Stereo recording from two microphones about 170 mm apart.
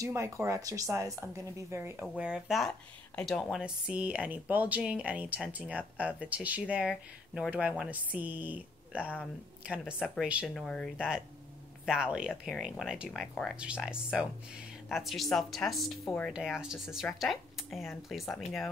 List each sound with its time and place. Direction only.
0.0 s speech: 15° right (ahead or behind); by 18.4 s centre (ahead or behind)